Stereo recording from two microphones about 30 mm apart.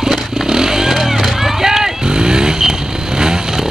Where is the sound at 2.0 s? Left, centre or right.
Right.